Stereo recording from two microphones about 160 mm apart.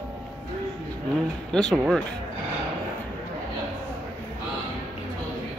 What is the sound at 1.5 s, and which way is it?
Speech, 5° left (ahead or behind).